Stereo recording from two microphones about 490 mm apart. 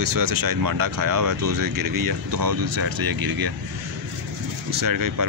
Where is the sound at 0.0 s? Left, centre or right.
Right.